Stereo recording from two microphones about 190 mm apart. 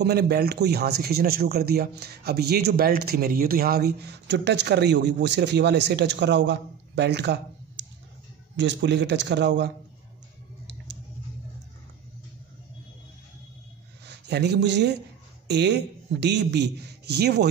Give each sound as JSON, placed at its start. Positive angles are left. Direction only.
{"t": 0.0, "sound": "speech", "side_deg": -60}
{"t": 14.0, "sound": "speech", "side_deg": -65}